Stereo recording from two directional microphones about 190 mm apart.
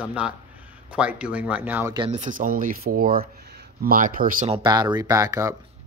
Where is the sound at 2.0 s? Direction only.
40° right (ahead or behind).